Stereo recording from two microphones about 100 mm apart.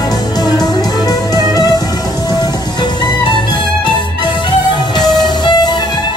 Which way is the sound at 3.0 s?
50° left (ahead or behind).